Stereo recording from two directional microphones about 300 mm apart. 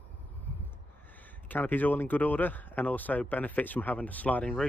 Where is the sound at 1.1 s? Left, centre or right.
Centre.